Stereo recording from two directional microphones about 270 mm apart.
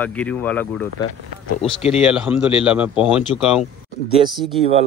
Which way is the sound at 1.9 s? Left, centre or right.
Centre.